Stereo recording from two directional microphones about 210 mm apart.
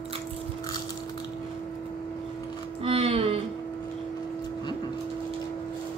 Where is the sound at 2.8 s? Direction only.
25° right (ahead or behind).